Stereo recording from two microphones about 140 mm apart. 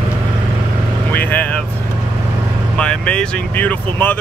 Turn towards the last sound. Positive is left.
turn(degrees=15)  # may be behind; listen again after turning